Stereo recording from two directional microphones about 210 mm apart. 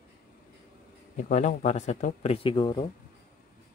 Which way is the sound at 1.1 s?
35° left (ahead or behind).